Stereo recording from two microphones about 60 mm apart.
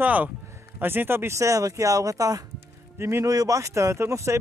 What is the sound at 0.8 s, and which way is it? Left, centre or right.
Speech, right.